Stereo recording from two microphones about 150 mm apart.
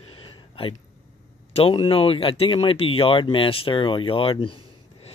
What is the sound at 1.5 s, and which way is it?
Speech, 40° left (ahead or behind).